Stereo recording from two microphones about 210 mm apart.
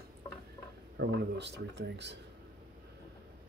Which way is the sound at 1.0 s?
55° right (ahead or behind).